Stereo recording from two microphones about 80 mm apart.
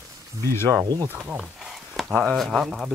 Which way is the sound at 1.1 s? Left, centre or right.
Right.